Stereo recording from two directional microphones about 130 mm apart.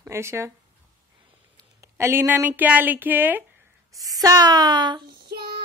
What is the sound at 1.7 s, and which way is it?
Speech, 20° right (ahead or behind).